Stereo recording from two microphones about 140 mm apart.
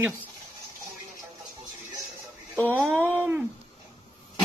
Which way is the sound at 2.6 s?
15° right (ahead or behind).